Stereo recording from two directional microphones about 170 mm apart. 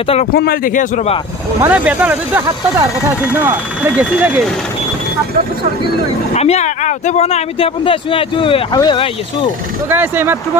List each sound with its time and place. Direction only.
0.3 s speech: 65° left (ahead or behind)
1.6 s speech: 10° right (ahead or behind)
6.3 s speech: 40° left (ahead or behind)
9.8 s speech: 10° right (ahead or behind)